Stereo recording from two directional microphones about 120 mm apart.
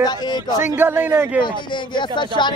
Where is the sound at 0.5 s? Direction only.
15° right (ahead or behind).